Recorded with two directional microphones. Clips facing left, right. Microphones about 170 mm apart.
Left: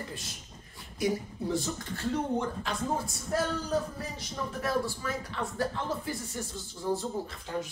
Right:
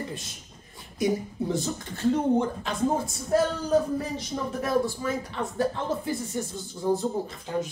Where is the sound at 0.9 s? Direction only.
20° right (ahead or behind).